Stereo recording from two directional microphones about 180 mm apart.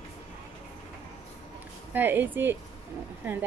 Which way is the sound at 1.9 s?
10° right (ahead or behind).